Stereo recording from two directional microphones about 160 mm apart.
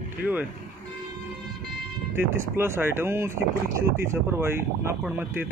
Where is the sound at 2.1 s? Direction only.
15° right (ahead or behind).